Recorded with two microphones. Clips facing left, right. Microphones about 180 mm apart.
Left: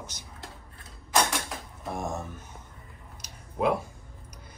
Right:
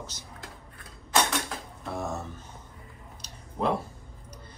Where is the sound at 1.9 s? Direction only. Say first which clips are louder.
Even; 15° left (ahead or behind).